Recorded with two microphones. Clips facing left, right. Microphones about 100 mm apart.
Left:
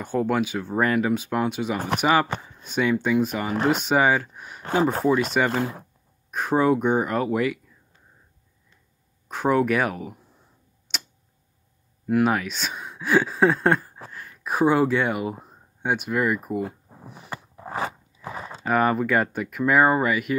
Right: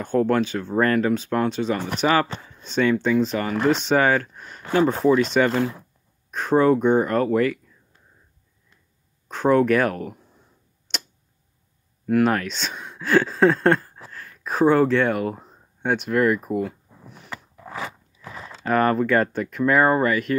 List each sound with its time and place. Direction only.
0.0 s speech: 10° left (ahead or behind)
9.3 s speech: 10° left (ahead or behind)
10.9 s tick-tock: 5° left (ahead or behind)
12.1 s speech: 10° left (ahead or behind)
16.9 s a sound: 40° left (ahead or behind)
18.6 s speech: 10° left (ahead or behind)